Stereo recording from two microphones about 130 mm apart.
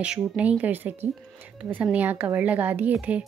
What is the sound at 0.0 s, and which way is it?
A woman's voice, 10° right (ahead or behind).